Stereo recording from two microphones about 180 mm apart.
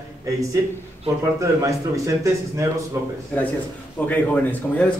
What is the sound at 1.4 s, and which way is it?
Speech, 15° right (ahead or behind).